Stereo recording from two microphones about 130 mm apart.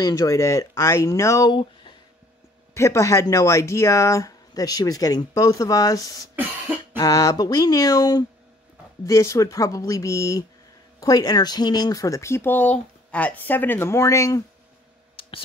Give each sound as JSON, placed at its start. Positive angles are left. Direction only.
{"t": 0.0, "sound": "speech", "side_deg": 25}
{"t": 1.5, "sound": "a sound", "side_deg": 35}
{"t": 2.7, "sound": "speech", "side_deg": 20}
{"t": 15.2, "sound": "clicking", "side_deg": 45}